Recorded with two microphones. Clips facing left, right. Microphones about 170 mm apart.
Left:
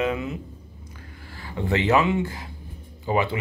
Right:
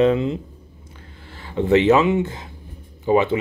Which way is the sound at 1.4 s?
20° right (ahead or behind).